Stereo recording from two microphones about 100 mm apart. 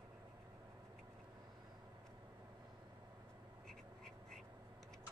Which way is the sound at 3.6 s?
5° left (ahead or behind).